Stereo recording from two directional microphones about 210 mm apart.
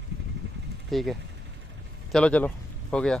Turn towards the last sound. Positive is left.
turn(degrees=5)  # may be behind; listen again after turning